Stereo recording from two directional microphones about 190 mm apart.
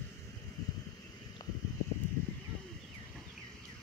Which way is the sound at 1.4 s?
20° left (ahead or behind).